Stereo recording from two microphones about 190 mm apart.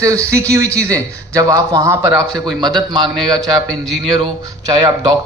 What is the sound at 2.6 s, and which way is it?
Speech, 20° right (ahead or behind).